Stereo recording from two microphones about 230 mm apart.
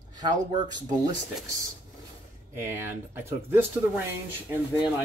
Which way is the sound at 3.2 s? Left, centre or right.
Centre.